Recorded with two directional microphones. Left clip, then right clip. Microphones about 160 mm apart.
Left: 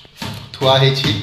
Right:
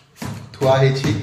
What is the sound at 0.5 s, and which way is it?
Speech, 5° left (ahead or behind).